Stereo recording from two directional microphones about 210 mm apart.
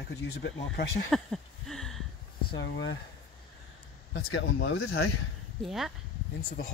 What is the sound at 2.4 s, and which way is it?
Speech, 55° left (ahead or behind).